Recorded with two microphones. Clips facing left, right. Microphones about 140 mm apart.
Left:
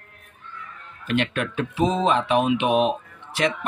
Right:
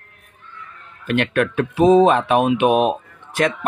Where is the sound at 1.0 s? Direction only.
55° right (ahead or behind).